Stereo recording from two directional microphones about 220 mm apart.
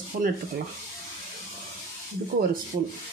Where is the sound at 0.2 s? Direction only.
40° right (ahead or behind).